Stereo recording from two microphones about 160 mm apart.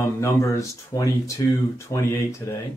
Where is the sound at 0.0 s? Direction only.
20° left (ahead or behind).